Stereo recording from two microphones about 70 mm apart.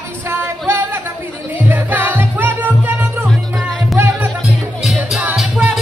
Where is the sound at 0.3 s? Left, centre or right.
Right.